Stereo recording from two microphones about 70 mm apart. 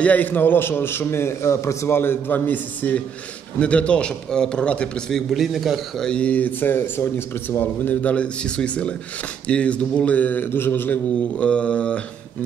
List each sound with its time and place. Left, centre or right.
0.0 s a man's voice: left
5.1 s a man's voice: centre
6.0 s speech: centre